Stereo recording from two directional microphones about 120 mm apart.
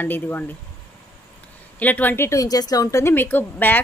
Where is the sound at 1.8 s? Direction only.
15° left (ahead or behind).